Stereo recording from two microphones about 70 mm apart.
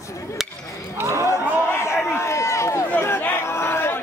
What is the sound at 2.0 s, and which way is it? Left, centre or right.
Run, left.